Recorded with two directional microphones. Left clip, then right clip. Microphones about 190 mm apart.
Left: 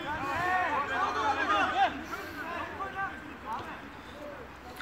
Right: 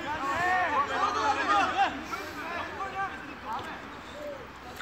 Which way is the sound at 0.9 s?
10° right (ahead or behind).